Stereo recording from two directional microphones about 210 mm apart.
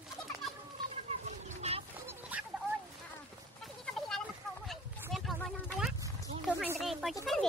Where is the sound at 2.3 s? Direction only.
10° right (ahead or behind).